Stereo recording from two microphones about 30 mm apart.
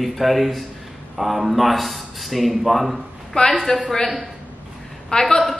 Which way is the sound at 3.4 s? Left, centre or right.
Left.